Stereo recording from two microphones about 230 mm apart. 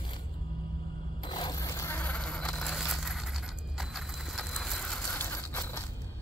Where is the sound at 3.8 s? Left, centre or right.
Centre.